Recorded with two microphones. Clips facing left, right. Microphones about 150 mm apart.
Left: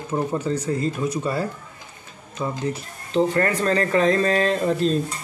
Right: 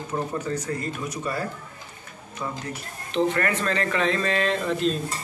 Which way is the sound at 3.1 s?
35° left (ahead or behind).